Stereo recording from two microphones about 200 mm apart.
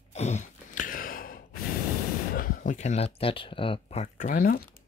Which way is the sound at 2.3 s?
45° left (ahead or behind).